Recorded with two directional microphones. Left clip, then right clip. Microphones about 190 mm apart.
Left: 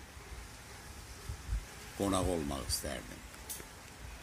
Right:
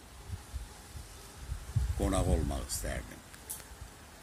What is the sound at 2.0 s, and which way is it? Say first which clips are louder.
A man's voice: even; 5° right (ahead or behind).